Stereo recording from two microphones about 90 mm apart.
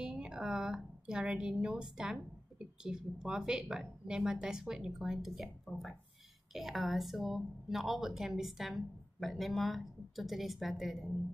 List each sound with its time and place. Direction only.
0.0 s a woman's voice: 10° right (ahead or behind)